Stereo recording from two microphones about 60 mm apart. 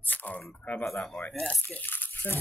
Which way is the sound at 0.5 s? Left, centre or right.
Left.